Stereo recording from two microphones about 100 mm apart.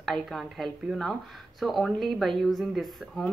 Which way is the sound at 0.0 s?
Centre (ahead or behind).